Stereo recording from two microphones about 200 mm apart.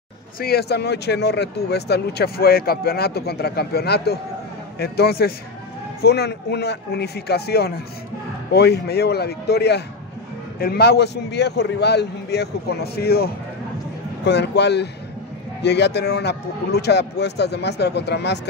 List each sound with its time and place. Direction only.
0.4 s a man's voice: 50° left (ahead or behind)